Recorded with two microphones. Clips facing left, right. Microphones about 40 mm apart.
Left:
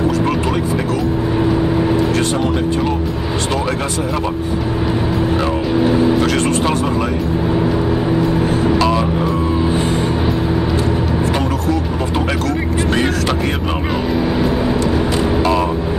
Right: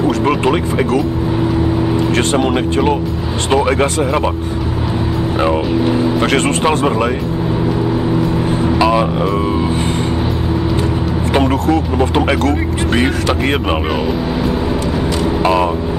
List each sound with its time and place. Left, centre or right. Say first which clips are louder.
0.2 s speech: right 3 dB; right
2.1 s speech: right 2 dB; right
6.2 s speech: right 2 dB; right
8.7 s music: right 2 dB; centre
11.3 s speech: right 4 dB; right
12.9 s speech: right 3 dB; centre
15.4 s speech: right 5 dB; right